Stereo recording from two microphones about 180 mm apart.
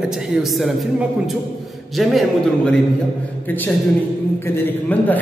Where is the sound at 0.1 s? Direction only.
Centre (ahead or behind).